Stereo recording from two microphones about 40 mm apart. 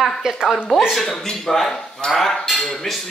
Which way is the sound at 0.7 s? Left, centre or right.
Centre.